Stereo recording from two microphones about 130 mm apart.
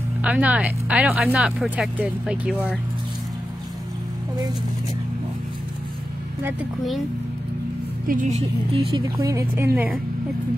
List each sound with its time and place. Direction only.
0.2 s speech: 10° right (ahead or behind)
8.1 s a woman's voice: 90° right
9.2 s a woman's voice: 25° right (ahead or behind)